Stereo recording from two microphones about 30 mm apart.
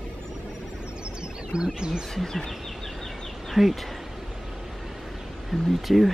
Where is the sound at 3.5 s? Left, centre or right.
Centre.